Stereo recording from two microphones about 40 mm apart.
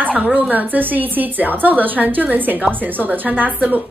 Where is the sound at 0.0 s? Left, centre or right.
Right.